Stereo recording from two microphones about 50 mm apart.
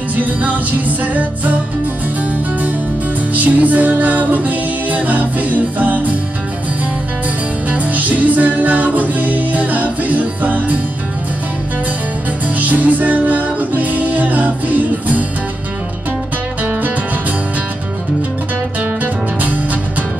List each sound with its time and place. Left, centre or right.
0.1 s music: right
3.3 s music: right
7.7 s music: right
12.4 s music: right
19.4 s music: right